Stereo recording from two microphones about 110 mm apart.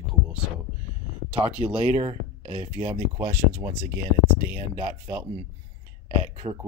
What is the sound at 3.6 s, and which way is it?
Speech, 40° right (ahead or behind).